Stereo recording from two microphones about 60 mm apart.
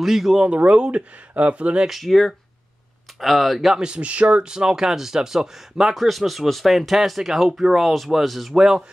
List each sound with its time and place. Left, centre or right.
0.0 s speech: centre
0.4 s speech: right
1.9 s speech: centre
3.8 s speech: centre